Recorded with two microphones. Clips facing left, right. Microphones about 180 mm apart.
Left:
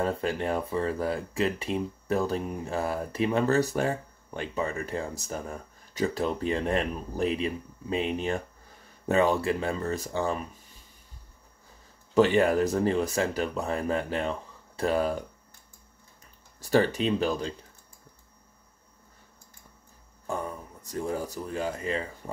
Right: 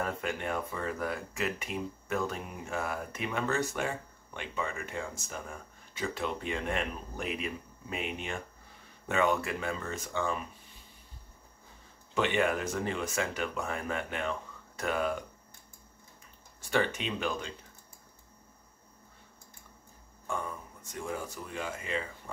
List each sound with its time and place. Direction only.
0.0 s speech: 35° left (ahead or behind)
12.1 s speech: 35° left (ahead or behind)
16.6 s speech: 35° left (ahead or behind)
20.2 s speech: 35° left (ahead or behind)